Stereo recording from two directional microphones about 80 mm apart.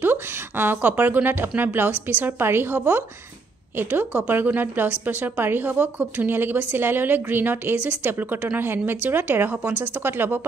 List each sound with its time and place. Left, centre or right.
0.0 s a woman's voice: right